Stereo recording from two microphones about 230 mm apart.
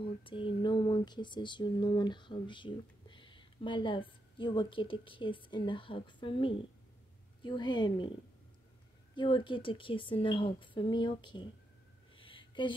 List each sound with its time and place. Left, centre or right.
0.0 s speech: left
9.1 s speech: left
12.2 s a sound: left